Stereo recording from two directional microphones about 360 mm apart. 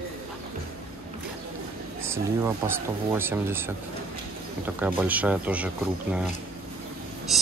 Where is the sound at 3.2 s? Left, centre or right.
Centre.